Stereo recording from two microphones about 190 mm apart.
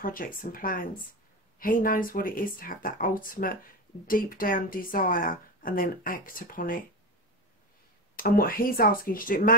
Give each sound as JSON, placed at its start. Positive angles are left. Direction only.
{"t": 0.0, "sound": "speech", "side_deg": 45}
{"t": 8.2, "sound": "speech", "side_deg": 50}